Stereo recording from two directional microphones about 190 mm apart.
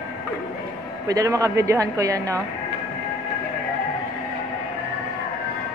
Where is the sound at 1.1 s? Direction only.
20° right (ahead or behind).